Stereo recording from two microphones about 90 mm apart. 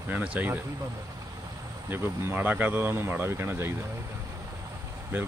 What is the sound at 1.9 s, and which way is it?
Speech, 25° right (ahead or behind).